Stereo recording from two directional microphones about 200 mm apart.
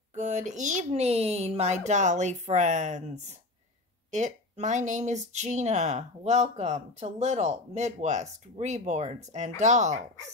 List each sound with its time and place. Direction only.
0.1 s speech: 35° right (ahead or behind)